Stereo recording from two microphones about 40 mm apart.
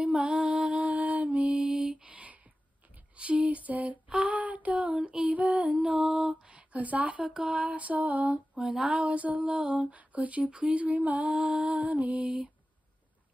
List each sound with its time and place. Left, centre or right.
0.0 s music: right
0.7 s mantra: right
1.9 s a sound: right
3.2 s mantra: right
4.1 s a sound: right
5.9 s a sound: right
7.4 s mantra: right
11.4 s music: right
11.7 s mantra: right